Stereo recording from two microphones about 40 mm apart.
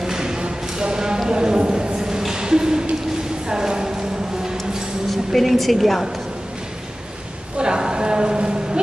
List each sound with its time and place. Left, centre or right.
0.0 s clip-clop: centre
3.4 s music: centre
5.1 s a woman's voice: centre
7.5 s a sound: right